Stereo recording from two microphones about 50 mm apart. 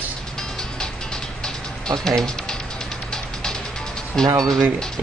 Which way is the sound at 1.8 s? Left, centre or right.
Centre.